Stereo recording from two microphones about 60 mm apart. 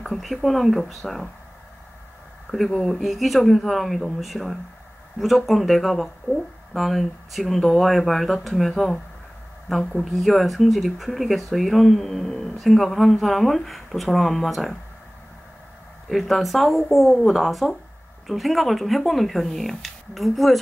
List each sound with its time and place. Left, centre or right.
0.0 s speech: centre
2.5 s speech: centre
6.3 s speech: left
6.7 s speech: centre
16.1 s speech: centre